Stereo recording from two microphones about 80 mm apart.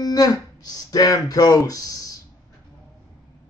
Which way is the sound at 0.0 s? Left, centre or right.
Left.